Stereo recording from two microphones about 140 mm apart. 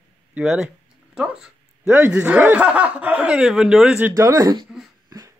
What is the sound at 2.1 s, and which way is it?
Speech, 5° right (ahead or behind).